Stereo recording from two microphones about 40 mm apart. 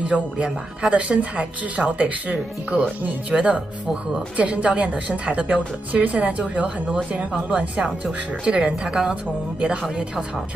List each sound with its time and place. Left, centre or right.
0.0 s speech: right
8.5 s speech: right